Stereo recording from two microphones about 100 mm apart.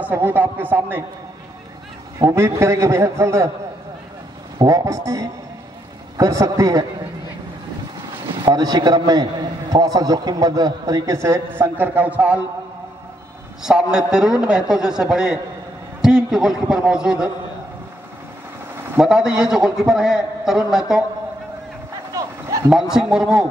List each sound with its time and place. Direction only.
0.0 s a man's voice: 20° right (ahead or behind)
2.1 s a man's voice: 30° right (ahead or behind)
4.6 s a man's voice: 35° right (ahead or behind)
8.5 s a man's voice: 45° right (ahead or behind); by 12.4 s 15° right (ahead or behind)
13.7 s a man's voice: 5° right (ahead or behind)
18.9 s a man's voice: 5° right (ahead or behind)
22.7 s a man's voice: 5° right (ahead or behind)